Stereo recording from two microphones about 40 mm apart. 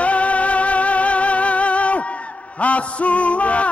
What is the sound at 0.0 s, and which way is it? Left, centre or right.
Music, left.